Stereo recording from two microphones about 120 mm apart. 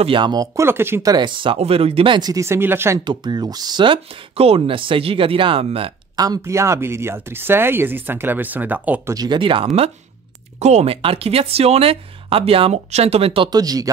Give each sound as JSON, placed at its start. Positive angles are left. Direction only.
{"t": 0.0, "sound": "speech", "side_deg": -45}
{"t": 0.7, "sound": "speech", "side_deg": -20}
{"t": 1.1, "sound": "speech", "side_deg": -40}
{"t": 1.6, "sound": "speech", "side_deg": -55}
{"t": 2.1, "sound": "speech", "side_deg": -35}
{"t": 2.4, "sound": "speech", "side_deg": -20}
{"t": 3.0, "sound": "speech", "side_deg": -40}
{"t": 6.1, "sound": "speech", "side_deg": -30}
{"t": 9.1, "sound": "speech", "side_deg": -35}
{"t": 10.6, "sound": "speech", "side_deg": -65}
{"t": 13.5, "sound": "speech", "side_deg": -30}